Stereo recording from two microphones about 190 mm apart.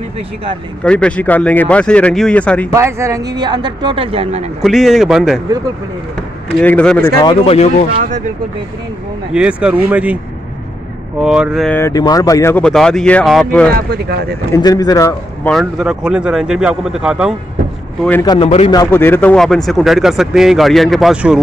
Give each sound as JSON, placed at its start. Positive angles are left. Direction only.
{"t": 0.8, "sound": "speech", "side_deg": 5}
{"t": 2.7, "sound": "speech", "side_deg": -15}
{"t": 4.6, "sound": "speech", "side_deg": 0}
{"t": 6.6, "sound": "speech", "side_deg": 5}
{"t": 7.2, "sound": "speech", "side_deg": 25}
{"t": 7.9, "sound": "speech", "side_deg": -40}
{"t": 9.3, "sound": "speech", "side_deg": -5}
{"t": 11.1, "sound": "speech", "side_deg": -5}
{"t": 11.7, "sound": "speech", "side_deg": 15}
{"t": 13.7, "sound": "speech", "side_deg": -55}
{"t": 14.5, "sound": "speech", "side_deg": 20}
{"t": 15.6, "sound": "speech", "side_deg": -5}
{"t": 18.2, "sound": "speech", "side_deg": 20}